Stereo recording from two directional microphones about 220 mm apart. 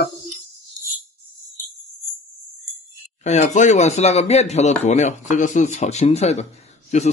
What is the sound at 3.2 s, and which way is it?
Speech, 30° left (ahead or behind).